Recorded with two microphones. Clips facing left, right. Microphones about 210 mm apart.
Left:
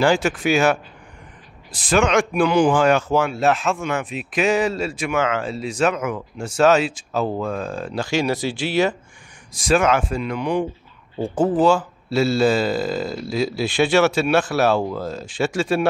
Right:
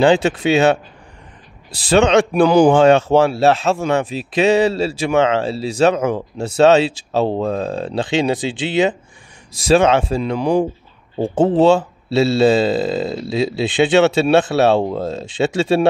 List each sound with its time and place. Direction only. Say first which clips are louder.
0.0 s speech: right 5 dB; 20° right (ahead or behind)
1.9 s speech: right 5 dB; 25° right (ahead or behind)
2.7 s speech: right 6 dB; 25° right (ahead or behind)
7.7 s speech: right 4 dB; 20° right (ahead or behind)